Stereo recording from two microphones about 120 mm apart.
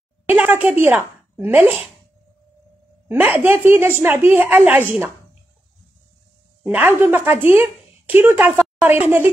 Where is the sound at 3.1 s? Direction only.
15° right (ahead or behind).